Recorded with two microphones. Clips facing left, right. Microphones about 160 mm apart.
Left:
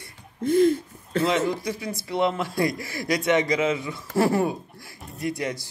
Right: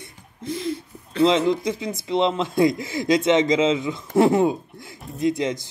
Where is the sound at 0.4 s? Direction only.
55° left (ahead or behind).